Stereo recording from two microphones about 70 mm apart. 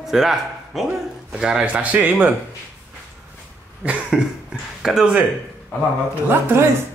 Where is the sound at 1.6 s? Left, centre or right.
Right.